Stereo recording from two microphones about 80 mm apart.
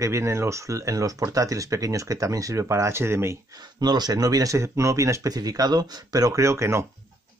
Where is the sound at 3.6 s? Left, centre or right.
Right.